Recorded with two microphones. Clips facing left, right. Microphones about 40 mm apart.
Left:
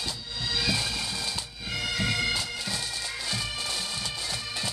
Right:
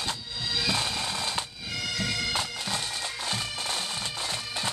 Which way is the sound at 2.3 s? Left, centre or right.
Right.